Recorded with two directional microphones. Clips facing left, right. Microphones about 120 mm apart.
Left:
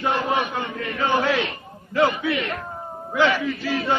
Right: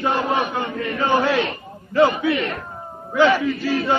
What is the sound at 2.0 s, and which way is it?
Chant, 40° right (ahead or behind).